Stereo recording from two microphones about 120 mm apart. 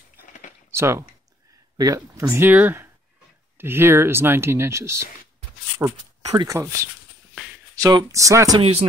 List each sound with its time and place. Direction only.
0.3 s a sound: 90° left
0.7 s speech: 20° right (ahead or behind)
8.5 s speech: 55° right (ahead or behind)